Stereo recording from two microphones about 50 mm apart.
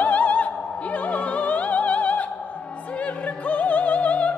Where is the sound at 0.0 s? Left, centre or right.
Left.